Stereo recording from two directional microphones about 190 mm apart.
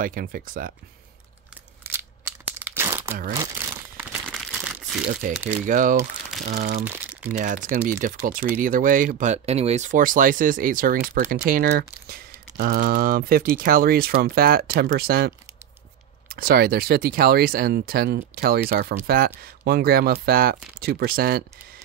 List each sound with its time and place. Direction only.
0.0 s speech: 50° right (ahead or behind)
1.8 s crumpling: 10° right (ahead or behind)
5.2 s speech: 45° right (ahead or behind)
6.8 s speech: 10° right (ahead or behind)
7.2 s speech: 45° right (ahead or behind)